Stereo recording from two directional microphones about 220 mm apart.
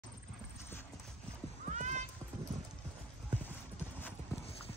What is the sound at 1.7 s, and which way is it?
Cat, 35° right (ahead or behind).